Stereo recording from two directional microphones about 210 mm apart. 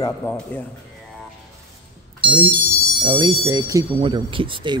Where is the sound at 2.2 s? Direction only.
15° right (ahead or behind).